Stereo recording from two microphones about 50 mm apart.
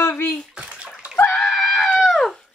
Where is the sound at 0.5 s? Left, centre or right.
Right.